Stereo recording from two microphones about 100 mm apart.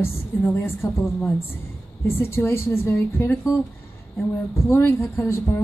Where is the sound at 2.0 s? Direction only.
25° left (ahead or behind).